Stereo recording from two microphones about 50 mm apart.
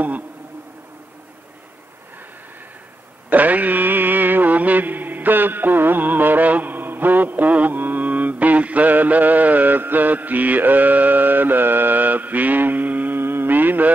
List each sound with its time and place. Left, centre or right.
3.3 s music: right
13.2 s mantra: right